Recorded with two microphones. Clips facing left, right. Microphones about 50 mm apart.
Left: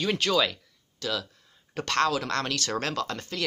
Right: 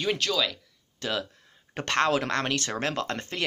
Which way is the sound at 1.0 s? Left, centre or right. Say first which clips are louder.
Right 1 dB; right.